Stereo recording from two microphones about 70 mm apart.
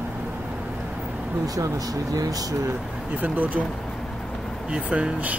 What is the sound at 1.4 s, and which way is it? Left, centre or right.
Speech, right.